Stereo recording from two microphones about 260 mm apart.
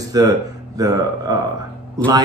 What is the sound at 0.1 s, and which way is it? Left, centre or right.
Speech, centre.